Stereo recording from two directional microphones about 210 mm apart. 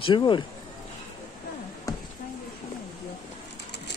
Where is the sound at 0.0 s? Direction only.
20° left (ahead or behind).